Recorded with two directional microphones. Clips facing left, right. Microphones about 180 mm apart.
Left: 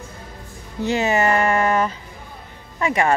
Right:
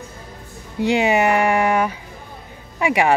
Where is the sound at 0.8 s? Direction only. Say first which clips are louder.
Right 2 dB; 15° right (ahead or behind).